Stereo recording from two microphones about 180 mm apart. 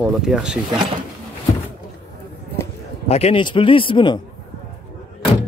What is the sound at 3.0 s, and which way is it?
Speech, 35° left (ahead or behind).